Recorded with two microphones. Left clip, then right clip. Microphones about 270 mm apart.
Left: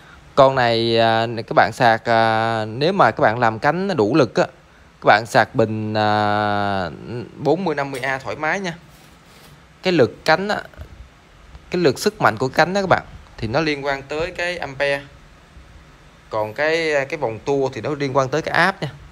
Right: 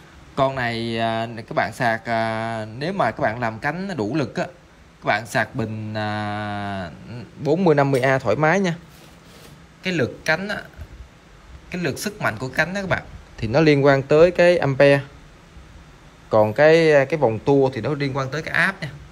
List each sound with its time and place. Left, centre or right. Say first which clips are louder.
0.4 s speech: left 8 dB; centre
7.5 s speech: right 5 dB; centre
9.8 s speech: left 7 dB; centre
11.7 s speech: left 9 dB; centre
16.5 s speech: right 4 dB; centre